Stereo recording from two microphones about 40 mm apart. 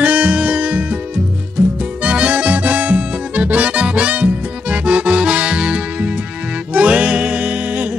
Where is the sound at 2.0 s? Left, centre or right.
Right.